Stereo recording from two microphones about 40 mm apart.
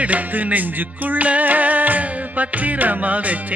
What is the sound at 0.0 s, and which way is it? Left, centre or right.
Music, right.